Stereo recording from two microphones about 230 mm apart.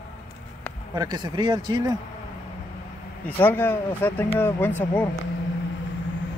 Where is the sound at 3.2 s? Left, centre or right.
Centre.